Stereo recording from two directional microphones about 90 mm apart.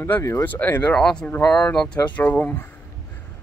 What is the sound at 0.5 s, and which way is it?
Speech, 20° left (ahead or behind).